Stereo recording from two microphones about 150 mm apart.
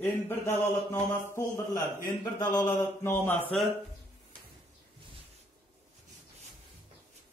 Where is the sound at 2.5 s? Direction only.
15° left (ahead or behind).